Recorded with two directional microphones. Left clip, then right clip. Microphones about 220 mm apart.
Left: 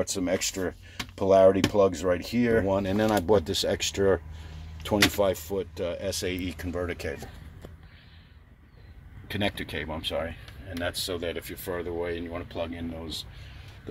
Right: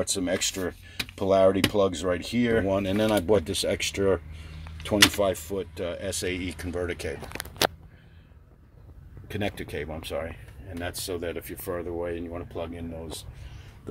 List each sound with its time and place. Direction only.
0.1 s speech: centre (ahead or behind)
5.2 s speech: centre (ahead or behind)
9.3 s speech: centre (ahead or behind)